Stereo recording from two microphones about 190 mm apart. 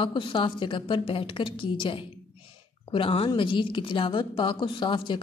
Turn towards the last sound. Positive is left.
turn(degrees=25)  # may be behind; listen again after turning